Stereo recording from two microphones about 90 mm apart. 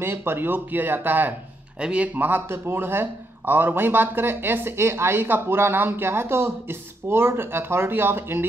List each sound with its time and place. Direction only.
0.0 s speech: 25° right (ahead or behind)